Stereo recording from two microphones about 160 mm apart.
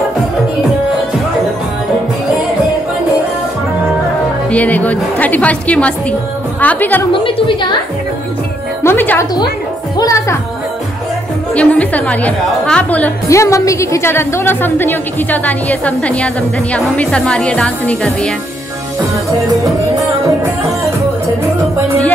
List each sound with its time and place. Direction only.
4.5 s a woman's voice: 10° left (ahead or behind)
7.1 s a woman's voice: 30° left (ahead or behind)
8.8 s speech: 10° left (ahead or behind)
11.5 s a woman's voice: 10° left (ahead or behind)